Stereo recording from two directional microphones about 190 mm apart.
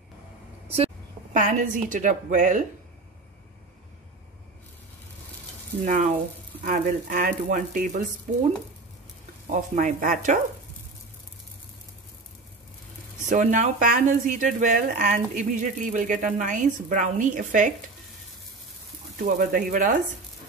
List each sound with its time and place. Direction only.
0.7 s a woman's voice: 35° right (ahead or behind)
5.9 s speech: 40° right (ahead or behind)
9.5 s speech: 40° right (ahead or behind)
13.3 s speech: 40° right (ahead or behind)
19.2 s speech: 45° right (ahead or behind)